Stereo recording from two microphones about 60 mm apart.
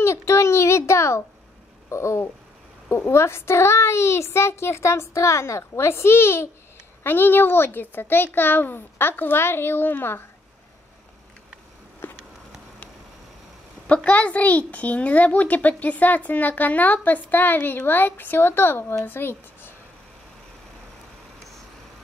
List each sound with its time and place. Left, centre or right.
0.0 s a sound: left
1.9 s a woman's voice: left
13.8 s a child's voice: left